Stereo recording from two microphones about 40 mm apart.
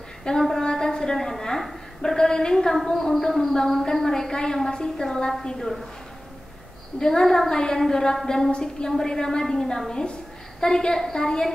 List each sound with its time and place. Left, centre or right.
0.2 s a sound: centre
2.0 s a woman's voice: centre
7.0 s a woman's voice: centre